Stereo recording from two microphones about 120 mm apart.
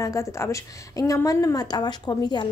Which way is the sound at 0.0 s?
25° left (ahead or behind).